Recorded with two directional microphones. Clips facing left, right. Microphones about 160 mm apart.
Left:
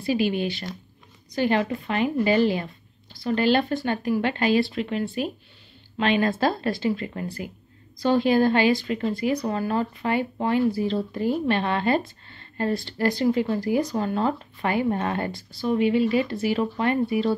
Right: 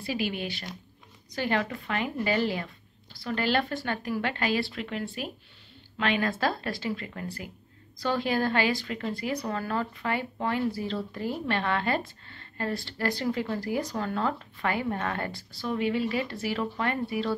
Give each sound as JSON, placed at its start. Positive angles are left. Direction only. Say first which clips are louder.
{"t": 0.0, "sound": "a woman's voice", "louder": "left 8 dB", "side_deg": 25}